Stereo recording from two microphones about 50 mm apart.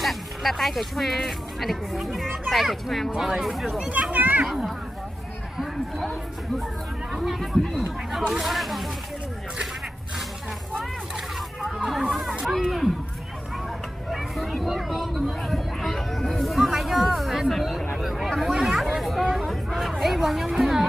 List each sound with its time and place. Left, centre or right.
0.0 s speech: centre
3.8 s speech: right
4.1 s a child's voice: right
4.5 s speech: centre
11.8 s speech: centre
14.1 s a sound: centre
19.3 s chatter: centre